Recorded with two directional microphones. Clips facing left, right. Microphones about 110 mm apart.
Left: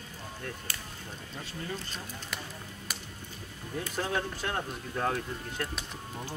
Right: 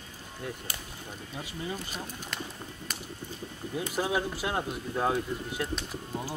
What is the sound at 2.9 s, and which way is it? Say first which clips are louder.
Music: even; 5° left (ahead or behind).